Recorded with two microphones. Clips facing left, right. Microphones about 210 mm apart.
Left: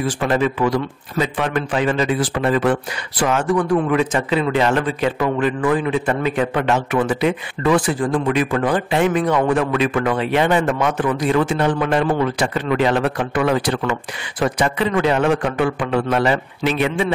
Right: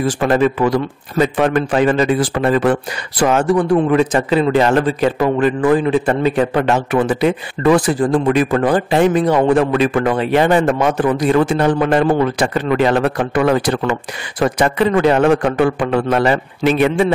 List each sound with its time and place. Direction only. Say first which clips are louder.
0.2 s a man's voice: right 4 dB; 45° right (ahead or behind)